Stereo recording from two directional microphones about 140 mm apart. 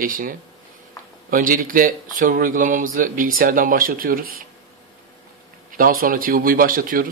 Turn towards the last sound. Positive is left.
turn(degrees=-85)